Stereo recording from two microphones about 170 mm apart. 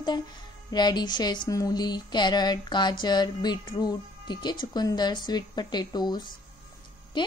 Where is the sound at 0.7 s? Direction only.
25° left (ahead or behind).